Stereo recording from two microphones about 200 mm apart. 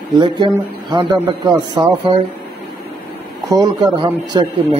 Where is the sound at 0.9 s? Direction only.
20° right (ahead or behind).